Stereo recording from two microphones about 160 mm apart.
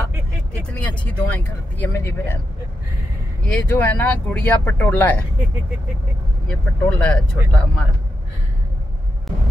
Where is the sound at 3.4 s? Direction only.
10° left (ahead or behind).